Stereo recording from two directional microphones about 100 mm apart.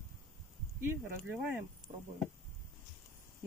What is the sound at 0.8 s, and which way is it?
Speech, 20° right (ahead or behind).